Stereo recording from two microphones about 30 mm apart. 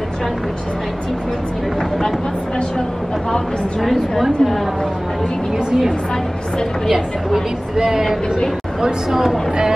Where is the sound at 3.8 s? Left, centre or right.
Centre.